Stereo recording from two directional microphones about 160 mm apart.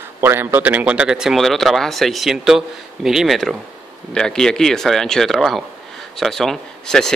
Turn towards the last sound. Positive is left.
turn(degrees=5)  # may be behind; listen again after turning